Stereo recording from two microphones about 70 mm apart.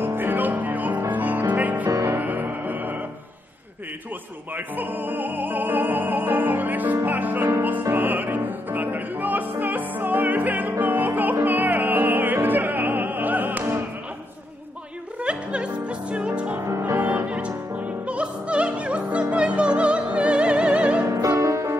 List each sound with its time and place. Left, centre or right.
0.0 s music: right
4.6 s opera: right
7.8 s music: right
11.4 s opera: right
15.2 s music: centre
16.5 s music: right
17.3 s music: centre
21.1 s music: right